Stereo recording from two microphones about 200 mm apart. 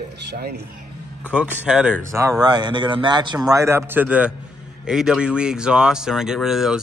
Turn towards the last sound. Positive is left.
turn(degrees=0)  # may be behind; listen again after turning